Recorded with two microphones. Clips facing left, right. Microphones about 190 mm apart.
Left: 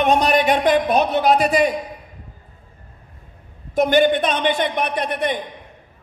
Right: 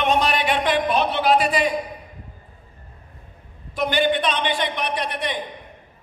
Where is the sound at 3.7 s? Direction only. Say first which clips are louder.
Left 5 dB; 50° left (ahead or behind).